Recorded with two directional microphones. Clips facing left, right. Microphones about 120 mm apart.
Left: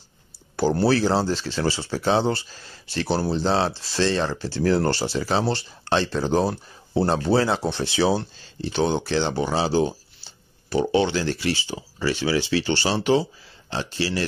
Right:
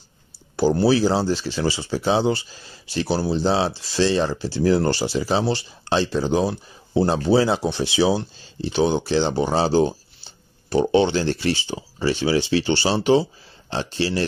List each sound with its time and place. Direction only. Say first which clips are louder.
0.6 s speech: right 2 dB; 5° right (ahead or behind)
9.5 s speech: right 3 dB; 30° right (ahead or behind)